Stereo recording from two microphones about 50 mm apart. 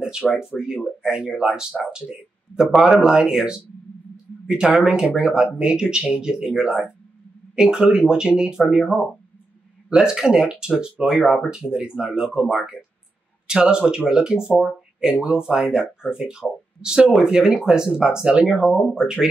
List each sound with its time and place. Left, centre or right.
0.5 s speech: centre
1.0 s speech: centre